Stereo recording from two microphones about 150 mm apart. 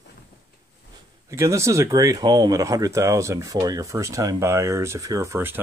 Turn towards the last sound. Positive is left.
turn(degrees=-15)  # may be behind; listen again after turning